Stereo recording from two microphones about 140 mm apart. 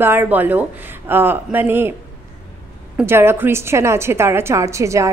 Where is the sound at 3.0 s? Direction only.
15° right (ahead or behind).